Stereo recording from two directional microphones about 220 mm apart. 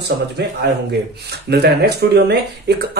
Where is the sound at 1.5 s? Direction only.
50° right (ahead or behind).